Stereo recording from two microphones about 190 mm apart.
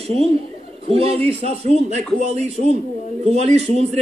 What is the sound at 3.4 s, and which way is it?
Speech, 35° right (ahead or behind).